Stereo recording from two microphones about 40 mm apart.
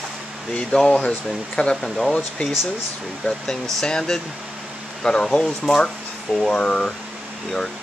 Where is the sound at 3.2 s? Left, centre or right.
Centre.